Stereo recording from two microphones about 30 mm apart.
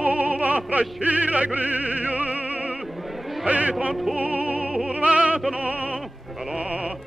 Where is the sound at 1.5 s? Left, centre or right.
Right.